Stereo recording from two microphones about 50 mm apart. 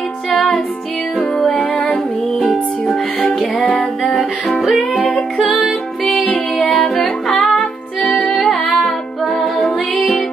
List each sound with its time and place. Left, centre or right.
2.3 s music: centre
2.9 s music: left
3.7 s music: centre